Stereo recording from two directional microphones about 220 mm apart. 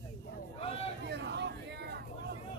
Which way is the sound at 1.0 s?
50° right (ahead or behind).